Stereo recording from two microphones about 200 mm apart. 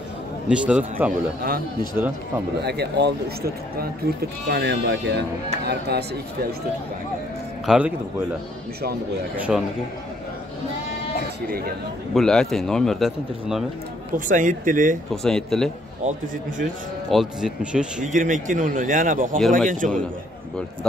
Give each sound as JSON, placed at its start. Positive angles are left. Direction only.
{"t": 0.5, "sound": "a man's voice", "side_deg": -5}
{"t": 1.4, "sound": "speech", "side_deg": -45}
{"t": 2.0, "sound": "speech", "side_deg": -10}
{"t": 2.6, "sound": "speech", "side_deg": -55}
{"t": 7.6, "sound": "a man's voice", "side_deg": -5}
{"t": 9.5, "sound": "a man's voice", "side_deg": -5}
{"t": 12.1, "sound": "a man's voice", "side_deg": 0}
{"t": 14.1, "sound": "a man's voice", "side_deg": -40}
{"t": 15.2, "sound": "a man's voice", "side_deg": 5}
{"t": 16.0, "sound": "a man's voice", "side_deg": -35}
{"t": 17.1, "sound": "a man's voice", "side_deg": 0}
{"t": 18.0, "sound": "a man's voice", "side_deg": -40}